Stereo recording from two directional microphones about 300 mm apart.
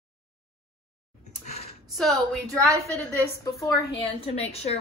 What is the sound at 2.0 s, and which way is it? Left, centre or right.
Speech, centre.